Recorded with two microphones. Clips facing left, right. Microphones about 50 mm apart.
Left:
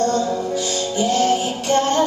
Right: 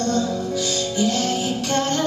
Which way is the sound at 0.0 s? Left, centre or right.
Left.